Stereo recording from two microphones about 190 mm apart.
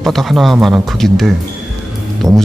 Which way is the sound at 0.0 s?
Centre (ahead or behind).